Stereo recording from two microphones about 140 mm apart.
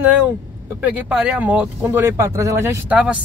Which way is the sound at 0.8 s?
10° right (ahead or behind).